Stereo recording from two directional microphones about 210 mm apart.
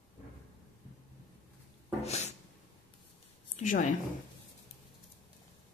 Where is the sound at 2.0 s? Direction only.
30° left (ahead or behind).